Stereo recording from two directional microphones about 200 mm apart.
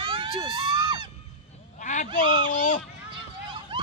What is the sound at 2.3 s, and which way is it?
Speech, 40° left (ahead or behind).